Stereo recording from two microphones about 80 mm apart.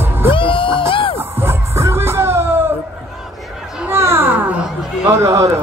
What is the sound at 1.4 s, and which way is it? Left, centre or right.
Music, right.